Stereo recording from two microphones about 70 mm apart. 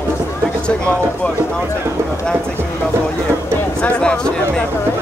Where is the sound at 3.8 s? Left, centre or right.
Centre.